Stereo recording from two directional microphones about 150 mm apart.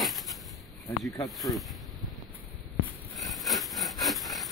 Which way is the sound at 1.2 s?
Centre (ahead or behind).